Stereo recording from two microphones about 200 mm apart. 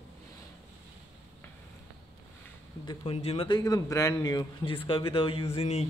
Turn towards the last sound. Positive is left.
turn(degrees=35)  # may be behind; listen again after turning